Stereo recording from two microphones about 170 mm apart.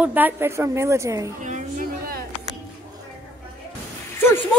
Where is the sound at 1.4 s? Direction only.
50° right (ahead or behind).